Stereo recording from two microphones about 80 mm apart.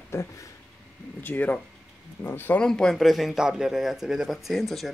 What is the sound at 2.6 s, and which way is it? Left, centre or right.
A man's voice, centre.